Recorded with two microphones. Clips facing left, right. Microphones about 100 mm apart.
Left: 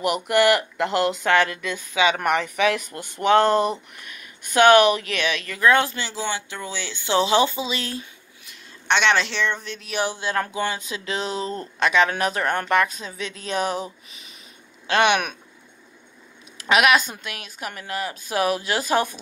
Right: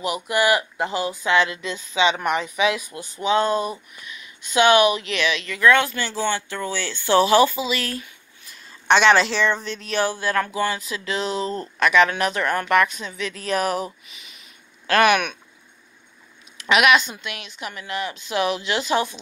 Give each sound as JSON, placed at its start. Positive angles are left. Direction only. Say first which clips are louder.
{"t": 0.0, "sound": "speech", "louder": "left 3 dB", "side_deg": 60}
{"t": 1.3, "sound": "speech", "louder": "right 3 dB", "side_deg": 50}
{"t": 5.9, "sound": "speech", "louder": "right 4 dB", "side_deg": 15}
{"t": 8.5, "sound": "speech", "louder": "right 5 dB", "side_deg": 0}
{"t": 9.9, "sound": "a woman's voice", "louder": "right 2 dB", "side_deg": 20}
{"t": 11.4, "sound": "speech", "louder": "right 2 dB", "side_deg": -35}
{"t": 11.8, "sound": "a woman's voice", "louder": "right 2 dB", "side_deg": 35}
{"t": 14.1, "sound": "a sound", "louder": "even", "side_deg": 35}
{"t": 14.9, "sound": "speech", "louder": "right 2 dB", "side_deg": 25}
{"t": 16.5, "sound": "a woman's voice", "louder": "right 1 dB", "side_deg": 35}